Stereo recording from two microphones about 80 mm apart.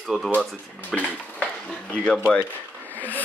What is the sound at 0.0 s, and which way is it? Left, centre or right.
Speech, centre.